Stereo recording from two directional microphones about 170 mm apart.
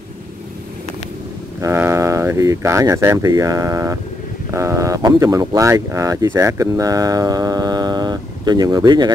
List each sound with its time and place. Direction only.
1.6 s speech: 15° right (ahead or behind)